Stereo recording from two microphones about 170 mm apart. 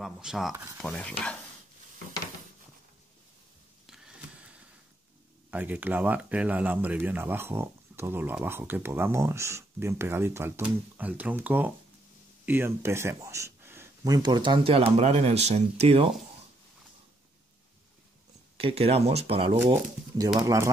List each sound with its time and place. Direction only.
0.0 s speech: centre (ahead or behind)
3.8 s a sound: 5° right (ahead or behind)
5.5 s speech: 10° right (ahead or behind); by 16.1 s 40° right (ahead or behind)
18.6 s speech: 35° right (ahead or behind)
19.6 s speech: 15° right (ahead or behind)